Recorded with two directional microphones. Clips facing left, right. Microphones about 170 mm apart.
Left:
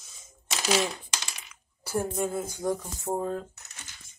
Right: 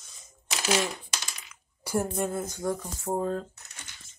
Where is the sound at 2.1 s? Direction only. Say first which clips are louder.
Even; centre (ahead or behind).